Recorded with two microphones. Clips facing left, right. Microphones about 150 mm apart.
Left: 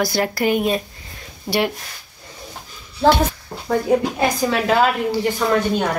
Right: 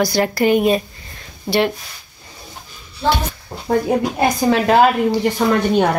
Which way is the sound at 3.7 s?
50° right (ahead or behind).